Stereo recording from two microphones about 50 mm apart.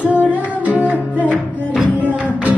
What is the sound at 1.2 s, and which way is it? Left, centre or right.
Music, right.